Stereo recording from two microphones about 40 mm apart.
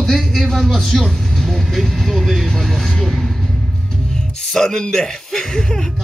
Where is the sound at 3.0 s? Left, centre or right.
Centre.